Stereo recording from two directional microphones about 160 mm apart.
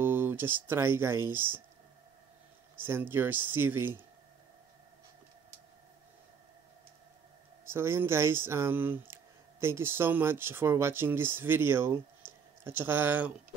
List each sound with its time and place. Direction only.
0.0 s speech: 15° right (ahead or behind)
2.8 s speech: 15° right (ahead or behind)
7.6 s speech: 15° right (ahead or behind)